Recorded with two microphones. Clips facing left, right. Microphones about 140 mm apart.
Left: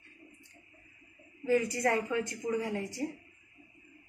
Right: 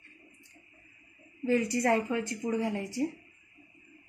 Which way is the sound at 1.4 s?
35° right (ahead or behind).